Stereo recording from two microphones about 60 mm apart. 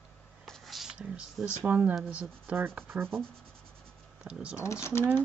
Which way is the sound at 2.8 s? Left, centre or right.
Right.